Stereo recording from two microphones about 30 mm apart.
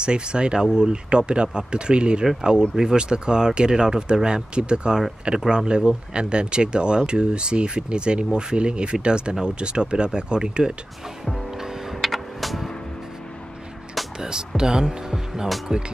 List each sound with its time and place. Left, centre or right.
0.0 s speech: right
2.7 s speech: centre
3.0 s speech: right
11.5 s music: centre
12.0 s music: centre
14.6 s speech: right